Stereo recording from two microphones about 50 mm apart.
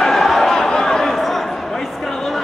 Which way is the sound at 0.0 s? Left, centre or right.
Centre.